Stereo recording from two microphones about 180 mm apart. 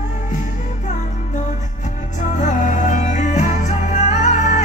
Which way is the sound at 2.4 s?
45° left (ahead or behind).